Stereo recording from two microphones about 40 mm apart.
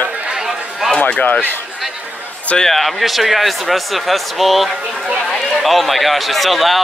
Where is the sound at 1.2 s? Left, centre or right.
Left.